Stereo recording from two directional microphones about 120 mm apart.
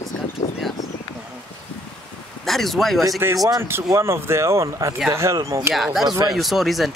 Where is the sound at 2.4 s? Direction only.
Centre (ahead or behind).